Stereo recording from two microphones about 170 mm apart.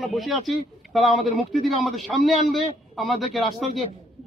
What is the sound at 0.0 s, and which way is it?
A man's voice, centre (ahead or behind).